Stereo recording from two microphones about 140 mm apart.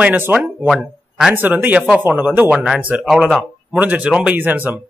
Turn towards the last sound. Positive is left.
turn(degrees=-15)  # may be behind; listen again after turning